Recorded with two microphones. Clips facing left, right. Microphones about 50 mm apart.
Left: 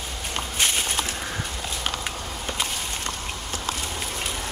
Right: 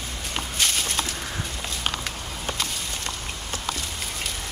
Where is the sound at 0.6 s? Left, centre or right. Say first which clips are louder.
Left 1 dB; left.